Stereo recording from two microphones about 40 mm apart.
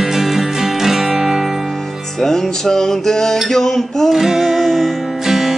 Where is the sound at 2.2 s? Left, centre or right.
Centre.